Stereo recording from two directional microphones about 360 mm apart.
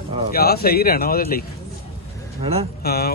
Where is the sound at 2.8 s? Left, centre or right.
Left.